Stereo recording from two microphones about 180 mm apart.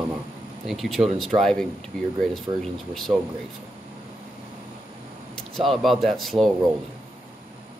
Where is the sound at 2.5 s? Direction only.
25° right (ahead or behind).